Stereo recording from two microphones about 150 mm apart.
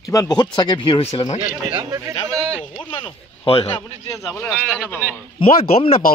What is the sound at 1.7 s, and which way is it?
Speech, 30° right (ahead or behind).